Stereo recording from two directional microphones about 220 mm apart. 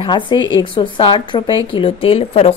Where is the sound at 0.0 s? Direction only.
20° left (ahead or behind).